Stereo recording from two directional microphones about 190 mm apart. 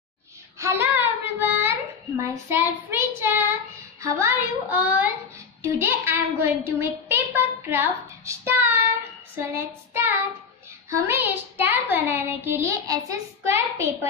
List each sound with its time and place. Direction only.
0.6 s a sound: 15° right (ahead or behind)
4.0 s a child's voice: 15° right (ahead or behind)
9.3 s child singing: 10° right (ahead or behind)
10.9 s a child's voice: 10° right (ahead or behind)